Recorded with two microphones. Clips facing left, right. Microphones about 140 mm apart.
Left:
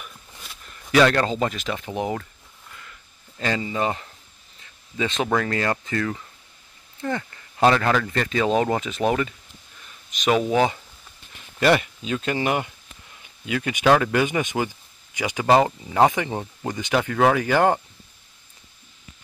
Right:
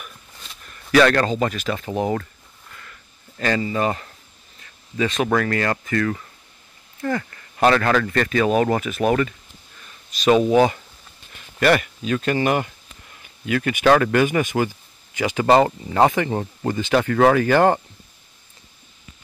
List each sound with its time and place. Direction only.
0.7 s speech: 15° left (ahead or behind)
3.3 s speech: 15° left (ahead or behind)
10.3 s speech: 20° right (ahead or behind)
11.6 s speech: 25° left (ahead or behind)